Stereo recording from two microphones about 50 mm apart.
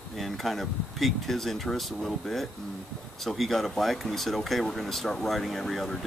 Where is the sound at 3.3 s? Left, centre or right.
Centre.